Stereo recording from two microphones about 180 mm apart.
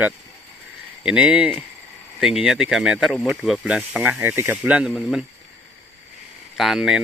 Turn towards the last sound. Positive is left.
turn(degrees=-5)  # may be behind; listen again after turning